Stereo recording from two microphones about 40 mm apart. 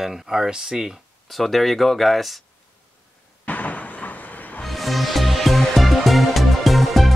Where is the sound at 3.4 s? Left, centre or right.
Left.